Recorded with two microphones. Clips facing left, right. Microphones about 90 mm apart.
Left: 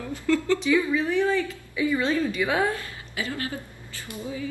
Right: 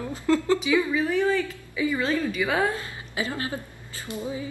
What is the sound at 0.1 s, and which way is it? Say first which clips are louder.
Speech: right 1 dB; 25° right (ahead or behind).